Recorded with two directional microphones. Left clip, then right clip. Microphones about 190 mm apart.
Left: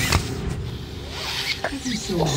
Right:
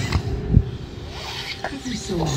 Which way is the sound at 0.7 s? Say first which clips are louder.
Left 2 dB; 25° left (ahead or behind).